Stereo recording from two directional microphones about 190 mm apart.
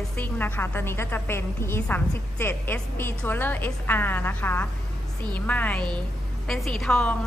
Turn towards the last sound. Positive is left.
turn(degrees=5)  # may be behind; listen again after turning